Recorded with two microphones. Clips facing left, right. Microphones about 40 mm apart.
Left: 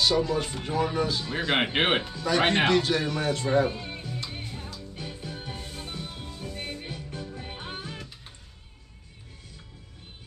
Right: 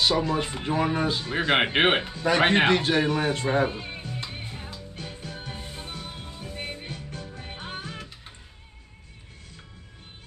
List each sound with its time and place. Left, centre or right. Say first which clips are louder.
0.0 s speech: right 1 dB; right
2.7 s music: right 2 dB; right
5.2 s music: even; centre
5.6 s music: even; centre
6.9 s music: left 1 dB; centre